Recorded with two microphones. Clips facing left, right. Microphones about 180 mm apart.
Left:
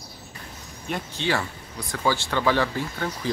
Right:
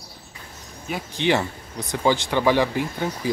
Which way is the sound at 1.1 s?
20° right (ahead or behind).